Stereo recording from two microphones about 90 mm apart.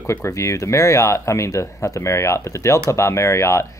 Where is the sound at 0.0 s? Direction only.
30° left (ahead or behind).